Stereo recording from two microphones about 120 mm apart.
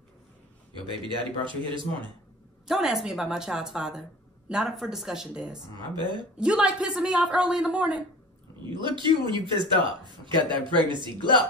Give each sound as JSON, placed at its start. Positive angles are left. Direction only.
{"t": 0.7, "sound": "a man's voice", "side_deg": -45}
{"t": 2.7, "sound": "a woman's voice", "side_deg": -5}
{"t": 5.9, "sound": "a man's voice", "side_deg": -40}
{"t": 6.3, "sound": "speech", "side_deg": -5}
{"t": 8.6, "sound": "a man's voice", "side_deg": -40}